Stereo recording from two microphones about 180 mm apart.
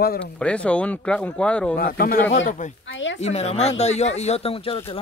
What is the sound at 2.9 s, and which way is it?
Speech, 90° left.